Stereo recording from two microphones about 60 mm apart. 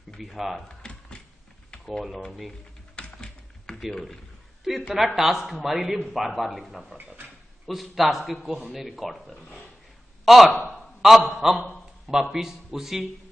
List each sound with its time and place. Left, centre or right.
0.2 s a man's voice: centre
0.7 s a sound: centre
3.0 s typing: centre
4.9 s a man's voice: centre